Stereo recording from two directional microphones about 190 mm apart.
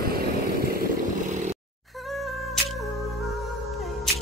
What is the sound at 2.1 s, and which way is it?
Music, centre (ahead or behind).